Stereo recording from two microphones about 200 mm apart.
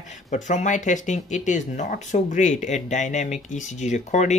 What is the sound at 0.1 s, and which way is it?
Speech, 35° left (ahead or behind).